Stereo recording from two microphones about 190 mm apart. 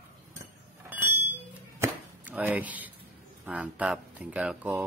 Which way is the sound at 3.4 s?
5° right (ahead or behind).